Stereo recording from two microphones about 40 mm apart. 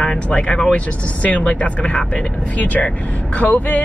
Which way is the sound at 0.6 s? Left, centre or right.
Left.